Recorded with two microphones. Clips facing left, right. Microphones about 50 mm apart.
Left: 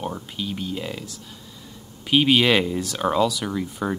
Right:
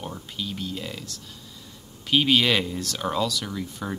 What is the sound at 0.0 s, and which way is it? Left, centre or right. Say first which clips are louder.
Speech: left 4 dB; centre.